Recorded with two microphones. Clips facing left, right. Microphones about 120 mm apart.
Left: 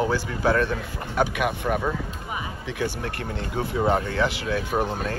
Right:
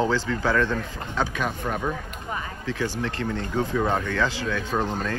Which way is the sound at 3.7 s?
20° left (ahead or behind).